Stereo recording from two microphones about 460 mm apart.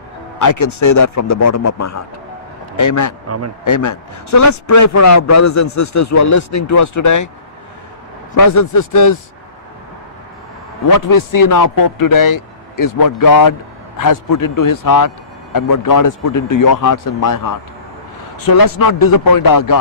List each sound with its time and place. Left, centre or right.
0.4 s a man's voice: left
3.3 s a man's voice: right
3.6 s a man's voice: left
8.4 s a man's voice: left
10.9 s a man's voice: left